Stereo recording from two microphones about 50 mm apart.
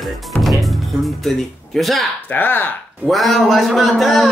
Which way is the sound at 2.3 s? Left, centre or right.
Left.